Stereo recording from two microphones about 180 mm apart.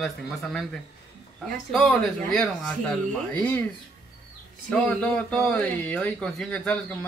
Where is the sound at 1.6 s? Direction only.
Centre (ahead or behind).